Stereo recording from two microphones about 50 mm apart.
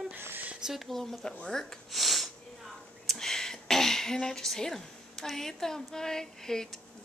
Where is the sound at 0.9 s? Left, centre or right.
Centre.